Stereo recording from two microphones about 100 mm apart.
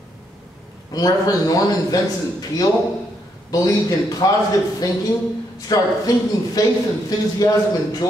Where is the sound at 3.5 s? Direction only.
40° left (ahead or behind).